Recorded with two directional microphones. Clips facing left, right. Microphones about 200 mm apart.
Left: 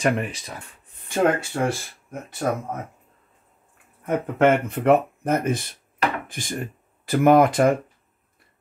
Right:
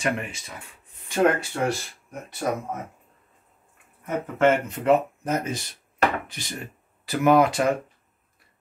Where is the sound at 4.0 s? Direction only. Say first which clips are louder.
Left 2 dB; 60° left (ahead or behind).